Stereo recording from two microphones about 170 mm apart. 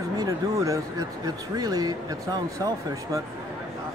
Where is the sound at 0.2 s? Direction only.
20° right (ahead or behind).